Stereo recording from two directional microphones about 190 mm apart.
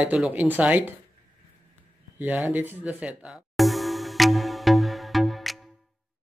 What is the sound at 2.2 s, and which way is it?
Music, 10° right (ahead or behind).